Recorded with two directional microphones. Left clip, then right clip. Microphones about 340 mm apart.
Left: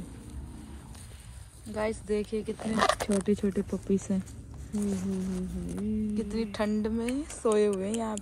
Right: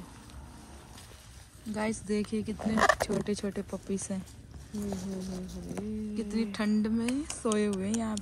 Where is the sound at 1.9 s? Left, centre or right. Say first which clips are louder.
Left 3 dB; centre.